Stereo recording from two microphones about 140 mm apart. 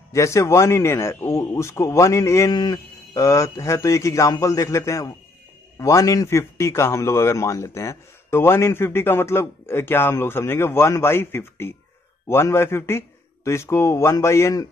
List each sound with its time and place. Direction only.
0.1 s a man's voice: 20° left (ahead or behind)